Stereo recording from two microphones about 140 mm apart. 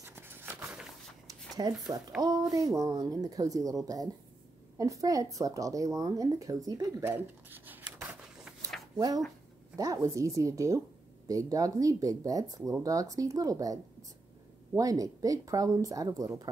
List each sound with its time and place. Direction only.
0.0 s a sound: 15° right (ahead or behind)
1.6 s speech: 25° right (ahead or behind); by 8.5 s 10° right (ahead or behind)
8.9 s speech: 25° right (ahead or behind)
14.8 s speech: 25° right (ahead or behind)